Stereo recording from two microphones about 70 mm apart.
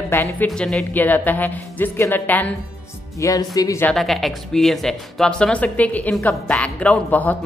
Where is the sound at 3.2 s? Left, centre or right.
Left.